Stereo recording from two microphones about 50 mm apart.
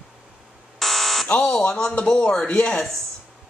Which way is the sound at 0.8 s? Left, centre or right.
Centre.